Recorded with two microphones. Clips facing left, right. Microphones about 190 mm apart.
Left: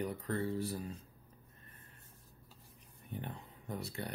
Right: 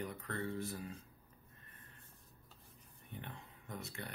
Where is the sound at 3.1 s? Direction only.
35° left (ahead or behind).